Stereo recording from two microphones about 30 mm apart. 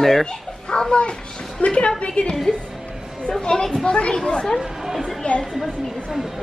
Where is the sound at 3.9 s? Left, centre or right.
Left.